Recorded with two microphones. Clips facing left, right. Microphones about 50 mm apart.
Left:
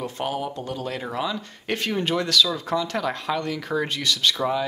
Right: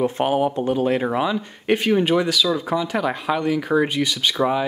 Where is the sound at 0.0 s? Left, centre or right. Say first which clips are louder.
Right 8 dB; right.